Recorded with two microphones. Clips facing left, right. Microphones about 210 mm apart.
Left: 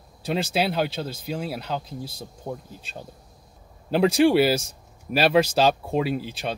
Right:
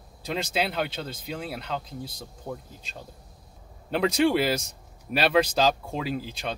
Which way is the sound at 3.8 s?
5° left (ahead or behind).